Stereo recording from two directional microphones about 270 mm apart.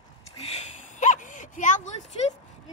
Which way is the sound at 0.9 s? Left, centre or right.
Left.